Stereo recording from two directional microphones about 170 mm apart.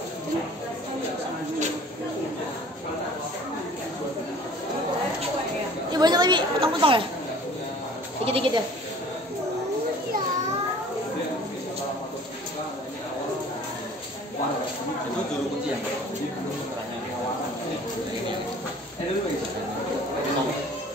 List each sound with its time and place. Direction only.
5.9 s a woman's voice: 25° right (ahead or behind)
8.3 s a woman's voice: 30° right (ahead or behind)